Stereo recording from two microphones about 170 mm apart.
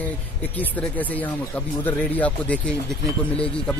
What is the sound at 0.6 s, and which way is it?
Speech, 10° left (ahead or behind).